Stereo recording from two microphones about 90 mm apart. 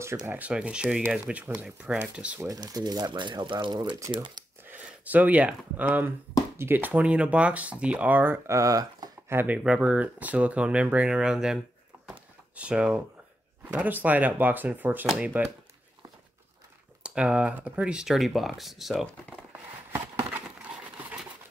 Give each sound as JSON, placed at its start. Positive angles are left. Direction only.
{"t": 0.3, "sound": "speech", "side_deg": -15}
{"t": 2.4, "sound": "speech", "side_deg": -40}
{"t": 4.1, "sound": "speech", "side_deg": -60}
{"t": 4.6, "sound": "speech", "side_deg": -20}
{"t": 8.5, "sound": "speech", "side_deg": -35}
{"t": 9.3, "sound": "speech", "side_deg": -25}
{"t": 9.6, "sound": "speech", "side_deg": -10}
{"t": 17.0, "sound": "speech", "side_deg": -10}
{"t": 20.2, "sound": "a sound", "side_deg": -15}